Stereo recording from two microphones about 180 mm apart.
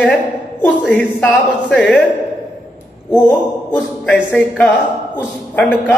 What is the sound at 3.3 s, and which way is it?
A man's voice, 10° left (ahead or behind).